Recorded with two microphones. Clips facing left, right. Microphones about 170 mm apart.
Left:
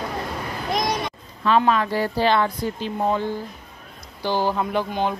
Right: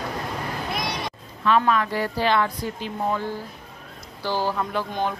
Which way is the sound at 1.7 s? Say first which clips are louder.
Left 2 dB; 30° left (ahead or behind).